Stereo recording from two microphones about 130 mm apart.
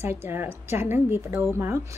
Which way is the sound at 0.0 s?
20° right (ahead or behind).